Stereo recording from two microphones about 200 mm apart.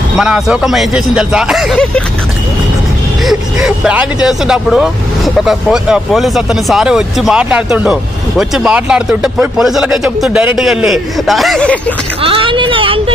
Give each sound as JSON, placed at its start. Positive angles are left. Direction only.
{"t": 0.2, "sound": "speech", "side_deg": -5}
{"t": 3.3, "sound": "speech", "side_deg": -5}
{"t": 12.2, "sound": "speech", "side_deg": -25}